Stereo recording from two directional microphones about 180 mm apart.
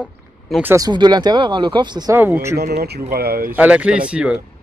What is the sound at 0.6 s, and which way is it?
Speech, 15° right (ahead or behind).